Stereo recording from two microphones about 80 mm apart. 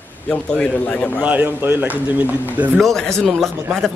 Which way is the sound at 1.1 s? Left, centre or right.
Right.